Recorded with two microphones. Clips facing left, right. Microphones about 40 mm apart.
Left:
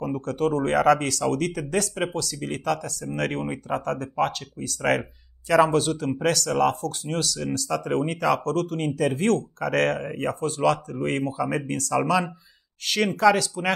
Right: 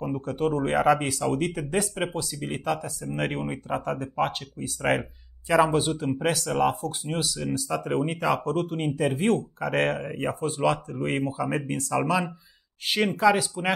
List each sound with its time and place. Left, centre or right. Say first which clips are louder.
0.0 s speech: left 2 dB; centre